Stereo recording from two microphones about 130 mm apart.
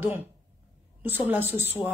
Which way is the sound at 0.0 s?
15° right (ahead or behind).